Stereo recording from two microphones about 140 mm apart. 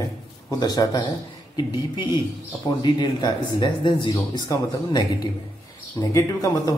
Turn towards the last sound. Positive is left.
turn(degrees=25)  # may be behind; listen again after turning